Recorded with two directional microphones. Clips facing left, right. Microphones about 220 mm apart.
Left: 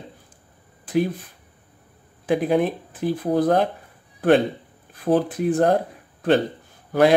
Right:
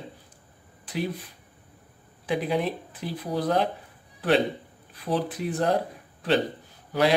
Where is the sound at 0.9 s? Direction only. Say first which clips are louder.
Left 10 dB; 50° left (ahead or behind).